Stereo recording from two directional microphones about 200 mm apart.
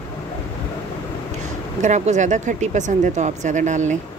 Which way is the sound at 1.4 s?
35° right (ahead or behind).